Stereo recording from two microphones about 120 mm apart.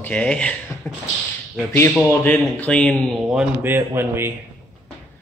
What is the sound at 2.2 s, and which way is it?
Speech, 10° left (ahead or behind).